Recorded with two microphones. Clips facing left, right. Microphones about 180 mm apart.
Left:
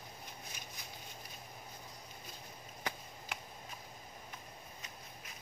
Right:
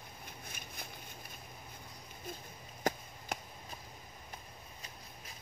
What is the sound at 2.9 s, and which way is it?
Chop, 45° right (ahead or behind).